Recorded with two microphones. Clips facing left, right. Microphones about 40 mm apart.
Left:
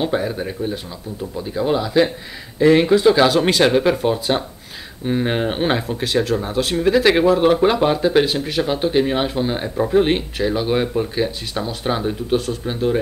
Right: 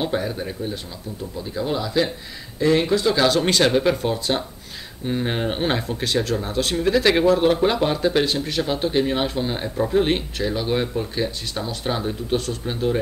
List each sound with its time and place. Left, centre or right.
0.0 s speech: centre